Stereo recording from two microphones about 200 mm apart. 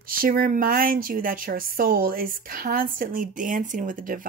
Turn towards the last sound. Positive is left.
turn(degrees=-45)  # may be behind; listen again after turning